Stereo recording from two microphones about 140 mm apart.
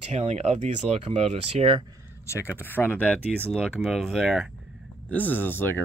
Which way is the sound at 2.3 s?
20° left (ahead or behind).